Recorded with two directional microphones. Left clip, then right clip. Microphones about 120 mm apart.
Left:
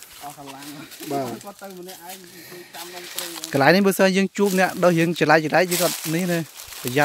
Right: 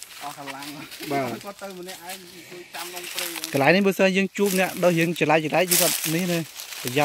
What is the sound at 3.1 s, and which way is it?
Speech, 10° right (ahead or behind).